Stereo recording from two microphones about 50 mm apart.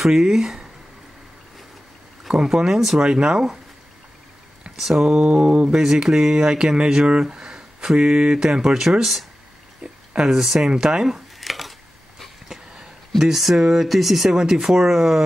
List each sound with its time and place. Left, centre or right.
0.0 s speech: centre
2.2 s speech: centre
3.0 s speech: centre
4.7 s speech: centre
5.2 s speech: right
11.3 s a sound: centre
13.2 s speech: centre